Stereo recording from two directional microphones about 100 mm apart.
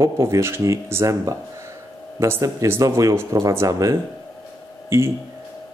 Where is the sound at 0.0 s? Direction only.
30° right (ahead or behind).